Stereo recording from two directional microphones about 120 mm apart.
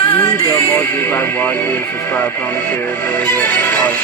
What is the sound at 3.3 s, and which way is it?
Music, 15° left (ahead or behind).